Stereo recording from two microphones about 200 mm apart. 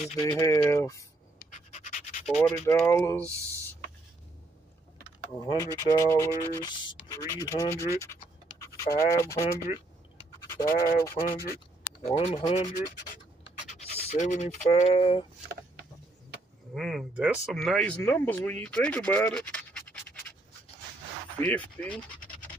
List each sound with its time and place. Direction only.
0.0 s speech: 30° left (ahead or behind)
0.3 s speech: 10° left (ahead or behind)
1.4 s a sound: 40° left (ahead or behind)
2.2 s speech: 5° left (ahead or behind)
5.5 s speech: 20° left (ahead or behind)
7.1 s scratch: 15° left (ahead or behind)
9.1 s speech: 15° left (ahead or behind)
10.4 s scratch: 15° left (ahead or behind)
10.7 s a sound: 45° left (ahead or behind)
12.0 s speech: 35° left (ahead or behind)
16.7 s speech: centre (ahead or behind)
21.4 s speech: 5° left (ahead or behind)